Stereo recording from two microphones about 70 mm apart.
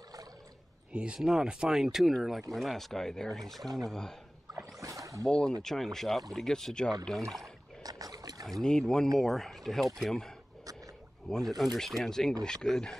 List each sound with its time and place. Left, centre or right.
0.9 s speech: centre
4.7 s rowboat: right
5.2 s speech: centre
7.8 s boat: right
8.5 s speech: centre